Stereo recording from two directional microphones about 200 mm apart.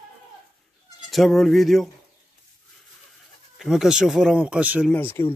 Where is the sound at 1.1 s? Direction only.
Centre (ahead or behind).